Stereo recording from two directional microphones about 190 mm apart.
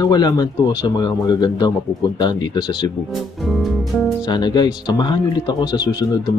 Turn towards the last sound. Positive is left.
turn(degrees=20)  # may be behind; listen again after turning